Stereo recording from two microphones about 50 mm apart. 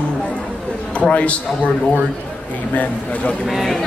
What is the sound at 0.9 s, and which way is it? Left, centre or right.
A man's voice, left.